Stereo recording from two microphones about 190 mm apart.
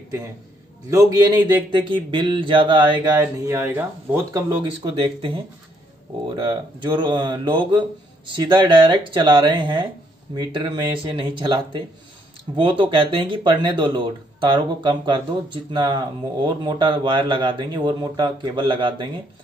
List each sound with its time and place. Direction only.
0.8 s speech: 20° right (ahead or behind)
5.0 s speech: 30° right (ahead or behind)